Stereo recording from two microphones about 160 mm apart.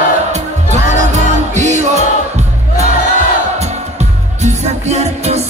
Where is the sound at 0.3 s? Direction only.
45° right (ahead or behind).